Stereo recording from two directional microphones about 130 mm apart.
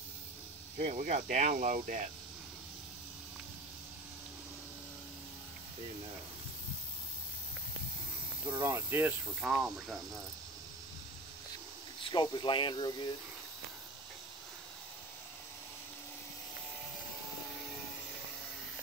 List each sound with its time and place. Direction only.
0.7 s speech: 70° right (ahead or behind); by 2.0 s 90° right
8.6 s speech: 20° right (ahead or behind)
9.4 s speech: 5° right (ahead or behind)
12.0 s speech: 35° left (ahead or behind)